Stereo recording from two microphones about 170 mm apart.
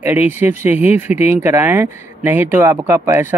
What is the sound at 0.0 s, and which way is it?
Speech, 10° right (ahead or behind).